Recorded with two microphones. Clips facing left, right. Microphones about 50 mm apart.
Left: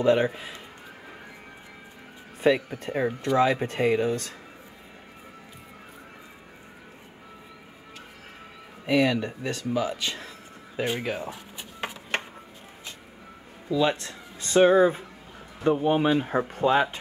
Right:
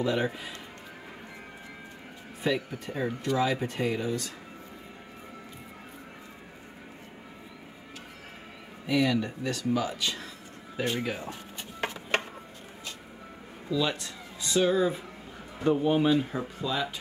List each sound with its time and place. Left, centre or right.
0.0 s speech: left
2.4 s speech: left
8.8 s speech: left
10.8 s speech: centre
13.7 s speech: left
15.6 s speech: centre
16.3 s speech: left